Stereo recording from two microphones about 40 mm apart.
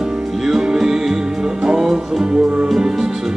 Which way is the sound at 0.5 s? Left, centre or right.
Centre.